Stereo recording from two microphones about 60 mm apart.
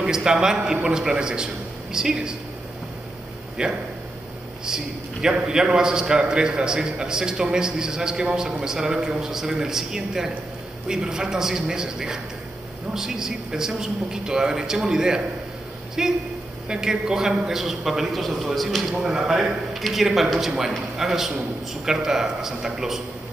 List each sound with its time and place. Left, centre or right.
0.0 s a man's voice: centre
3.6 s a man's voice: centre